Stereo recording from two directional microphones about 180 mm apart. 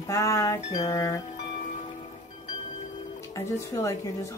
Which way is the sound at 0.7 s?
20° left (ahead or behind).